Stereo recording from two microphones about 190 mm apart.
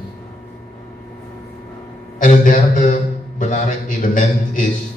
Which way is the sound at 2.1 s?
45° left (ahead or behind).